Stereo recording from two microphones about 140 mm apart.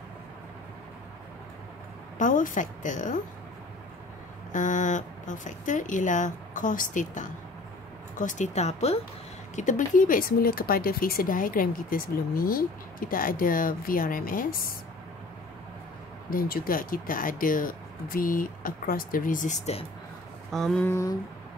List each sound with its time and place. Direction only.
2.1 s speech: 70° left (ahead or behind)
4.5 s speech: 65° left (ahead or behind)
9.6 s speech: 65° left (ahead or behind); by 14.7 s 85° left
16.3 s speech: 90° left; by 19.5 s 75° left (ahead or behind)
19.6 s speech: 45° left (ahead or behind)
20.5 s a sound: centre (ahead or behind)
20.8 s a sound: 20° left (ahead or behind)